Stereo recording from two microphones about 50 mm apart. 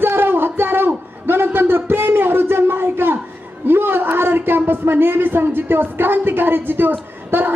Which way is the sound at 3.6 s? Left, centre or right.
Right.